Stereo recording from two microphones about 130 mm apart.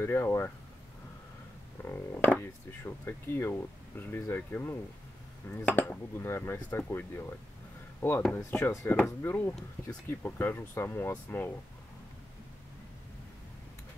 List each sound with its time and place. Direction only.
0.0 s speech: 20° left (ahead or behind)
1.9 s speech: 15° left (ahead or behind)
8.5 s speech: 15° left (ahead or behind)